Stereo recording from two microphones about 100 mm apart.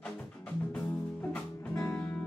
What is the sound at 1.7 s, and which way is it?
Music, 25° left (ahead or behind).